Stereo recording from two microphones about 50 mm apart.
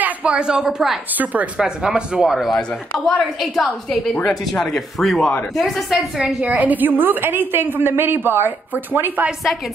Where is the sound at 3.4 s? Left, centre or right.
Centre.